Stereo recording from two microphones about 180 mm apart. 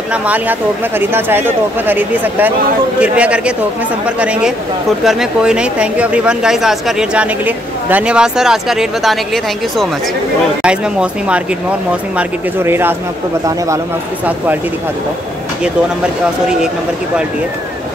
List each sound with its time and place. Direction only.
0.1 s speech: 10° right (ahead or behind)